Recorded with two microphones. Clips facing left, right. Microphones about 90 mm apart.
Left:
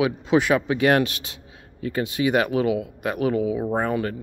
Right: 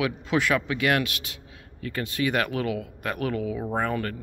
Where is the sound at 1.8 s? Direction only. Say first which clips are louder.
Left 4 dB; 20° left (ahead or behind).